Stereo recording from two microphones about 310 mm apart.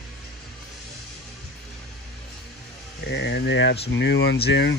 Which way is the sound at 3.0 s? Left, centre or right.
Left.